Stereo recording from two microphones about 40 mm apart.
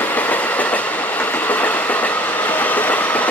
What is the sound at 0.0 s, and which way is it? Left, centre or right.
Train, left.